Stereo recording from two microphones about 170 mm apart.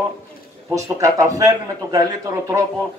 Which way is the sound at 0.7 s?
20° right (ahead or behind).